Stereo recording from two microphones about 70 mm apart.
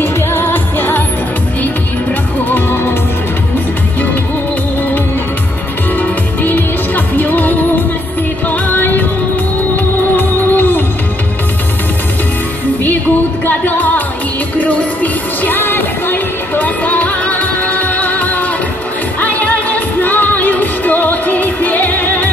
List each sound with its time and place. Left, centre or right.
0.0 s music: left
2.5 s music: left
5.9 s music: left
10.1 s music: left
13.5 s music: left